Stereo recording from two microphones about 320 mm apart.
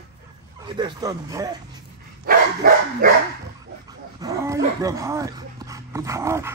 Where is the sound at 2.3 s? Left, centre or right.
Right.